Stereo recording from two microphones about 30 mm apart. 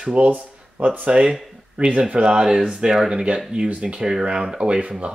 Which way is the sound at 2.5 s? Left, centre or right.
Right.